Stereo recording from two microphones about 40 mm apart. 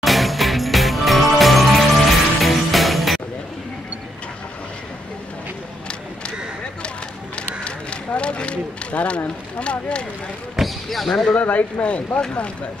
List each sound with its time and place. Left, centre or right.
0.0 s music: centre
7.3 s run: left
9.6 s speech: left
10.6 s basketball bounce: centre
11.4 s speech: left